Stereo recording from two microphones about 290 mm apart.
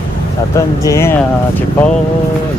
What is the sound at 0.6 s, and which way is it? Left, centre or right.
Speech, centre.